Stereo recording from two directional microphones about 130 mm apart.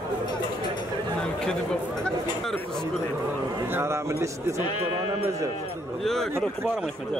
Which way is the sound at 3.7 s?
20° right (ahead or behind).